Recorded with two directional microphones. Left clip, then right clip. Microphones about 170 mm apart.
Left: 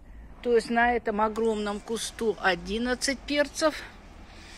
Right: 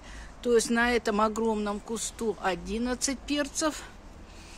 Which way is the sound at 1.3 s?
20° right (ahead or behind).